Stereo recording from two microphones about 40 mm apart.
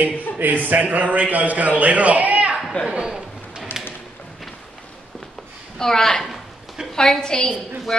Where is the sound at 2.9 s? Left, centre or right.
Centre.